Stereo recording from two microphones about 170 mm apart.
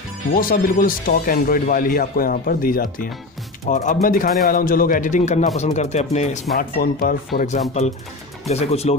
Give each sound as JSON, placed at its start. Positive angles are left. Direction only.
{"t": 0.3, "sound": "a man's voice", "side_deg": 55}
{"t": 6.5, "sound": "speech", "side_deg": 55}
{"t": 7.3, "sound": "a man's voice", "side_deg": 45}